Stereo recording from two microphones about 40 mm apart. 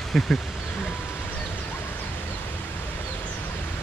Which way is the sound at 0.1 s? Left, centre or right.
Centre.